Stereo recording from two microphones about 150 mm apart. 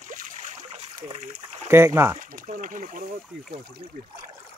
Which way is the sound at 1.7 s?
15° right (ahead or behind).